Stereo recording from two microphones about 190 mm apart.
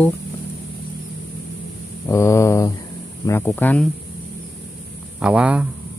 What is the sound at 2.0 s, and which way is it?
Mantra, 15° left (ahead or behind).